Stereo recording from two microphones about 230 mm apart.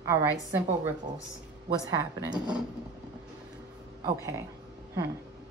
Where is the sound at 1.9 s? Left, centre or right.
Centre.